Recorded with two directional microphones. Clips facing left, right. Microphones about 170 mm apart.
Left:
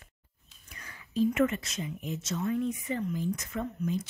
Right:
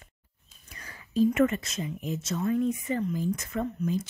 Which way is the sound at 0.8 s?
40° right (ahead or behind).